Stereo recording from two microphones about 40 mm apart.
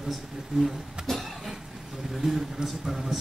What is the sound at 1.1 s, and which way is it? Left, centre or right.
Vehicle, centre.